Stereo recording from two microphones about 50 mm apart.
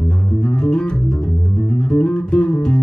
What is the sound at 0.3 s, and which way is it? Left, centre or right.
Music, centre.